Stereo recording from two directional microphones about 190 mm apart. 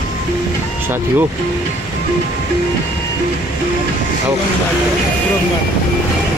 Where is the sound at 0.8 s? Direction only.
10° right (ahead or behind).